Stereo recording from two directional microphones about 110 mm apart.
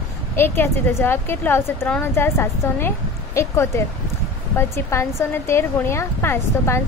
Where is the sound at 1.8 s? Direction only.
10° left (ahead or behind).